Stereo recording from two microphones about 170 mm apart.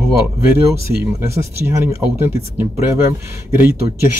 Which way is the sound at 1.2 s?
15° right (ahead or behind).